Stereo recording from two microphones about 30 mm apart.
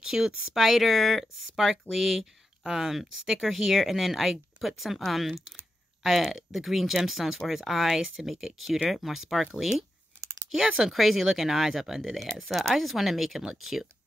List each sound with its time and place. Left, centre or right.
0.0 s speech: centre
0.6 s speech: centre
1.2 s speech: centre